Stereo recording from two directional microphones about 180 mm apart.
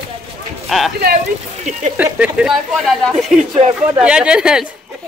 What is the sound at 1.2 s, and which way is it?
Speech, 40° right (ahead or behind).